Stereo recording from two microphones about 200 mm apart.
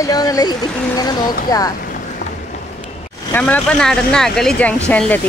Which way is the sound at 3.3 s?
10° left (ahead or behind).